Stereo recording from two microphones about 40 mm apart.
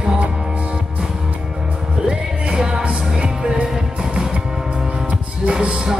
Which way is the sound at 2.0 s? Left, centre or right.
Right.